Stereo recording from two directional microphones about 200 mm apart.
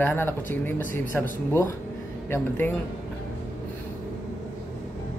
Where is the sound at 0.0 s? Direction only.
10° left (ahead or behind).